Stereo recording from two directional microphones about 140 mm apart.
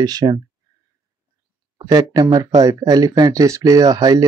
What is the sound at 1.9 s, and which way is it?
Speech, 30° right (ahead or behind).